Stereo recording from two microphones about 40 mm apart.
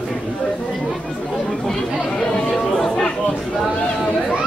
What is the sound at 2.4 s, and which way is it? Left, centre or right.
Chatter, centre.